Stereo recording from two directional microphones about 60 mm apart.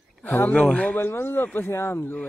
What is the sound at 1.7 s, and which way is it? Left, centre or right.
Speech, left.